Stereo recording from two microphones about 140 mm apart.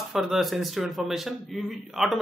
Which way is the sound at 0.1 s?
Centre (ahead or behind).